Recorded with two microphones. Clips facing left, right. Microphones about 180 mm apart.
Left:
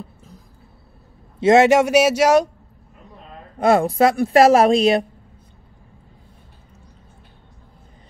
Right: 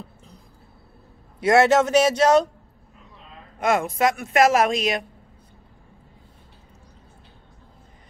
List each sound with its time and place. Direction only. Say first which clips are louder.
1.4 s speech: left 4 dB; 20° left (ahead or behind)
3.5 s a woman's voice: left 6 dB; 35° left (ahead or behind)